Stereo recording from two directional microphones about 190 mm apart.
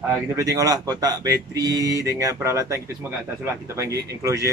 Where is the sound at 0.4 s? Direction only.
15° right (ahead or behind).